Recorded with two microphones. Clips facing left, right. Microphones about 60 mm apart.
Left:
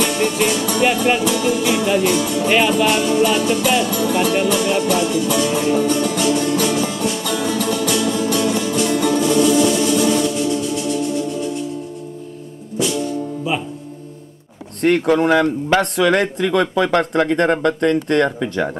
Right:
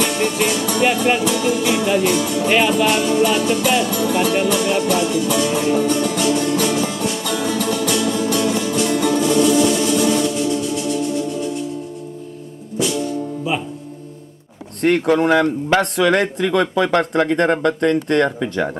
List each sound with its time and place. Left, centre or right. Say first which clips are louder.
0.0 s music: left 1 dB; right
5.9 s music: even; right
12.7 s music: even; right
14.8 s music: even; right
17.1 s speech: even; right